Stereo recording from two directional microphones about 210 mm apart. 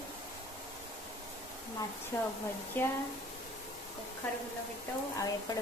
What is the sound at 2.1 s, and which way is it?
Speech, 10° left (ahead or behind).